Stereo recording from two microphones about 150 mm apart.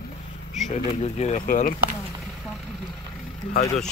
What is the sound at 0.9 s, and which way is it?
Speech, 45° left (ahead or behind).